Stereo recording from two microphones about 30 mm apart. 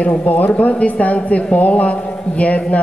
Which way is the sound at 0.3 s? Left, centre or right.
Left.